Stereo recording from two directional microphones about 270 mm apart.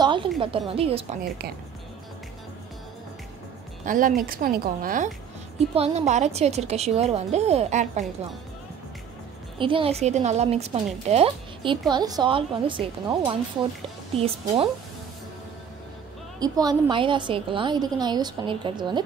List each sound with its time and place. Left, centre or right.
0.0 s a sound: centre
0.4 s a woman's voice: right
3.8 s a woman's voice: right
9.6 s a woman's voice: centre
16.3 s a woman's voice: centre